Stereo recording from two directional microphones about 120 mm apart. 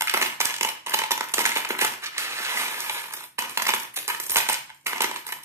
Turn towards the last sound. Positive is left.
turn(degrees=-20)  # may be behind; listen again after turning